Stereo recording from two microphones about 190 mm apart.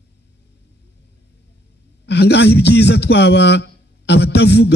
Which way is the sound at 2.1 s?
60° left (ahead or behind).